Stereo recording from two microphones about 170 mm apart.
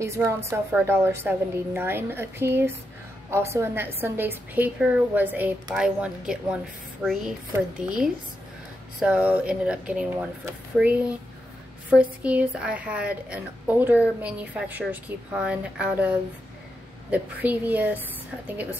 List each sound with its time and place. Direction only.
0.0 s a woman's voice: 15° right (ahead or behind)